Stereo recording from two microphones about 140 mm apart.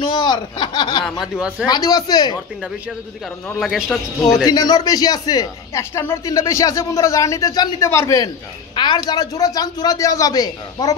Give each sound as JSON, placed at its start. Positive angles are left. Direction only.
{"t": 0.0, "sound": "speech", "side_deg": 30}
{"t": 1.2, "sound": "a man's voice", "side_deg": -5}
{"t": 1.7, "sound": "speech", "side_deg": 25}
{"t": 3.5, "sound": "a man's voice", "side_deg": 0}
{"t": 4.5, "sound": "speech", "side_deg": 25}
{"t": 8.7, "sound": "speech", "side_deg": 30}